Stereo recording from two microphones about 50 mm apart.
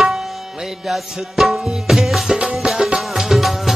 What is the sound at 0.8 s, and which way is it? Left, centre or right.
Music, centre.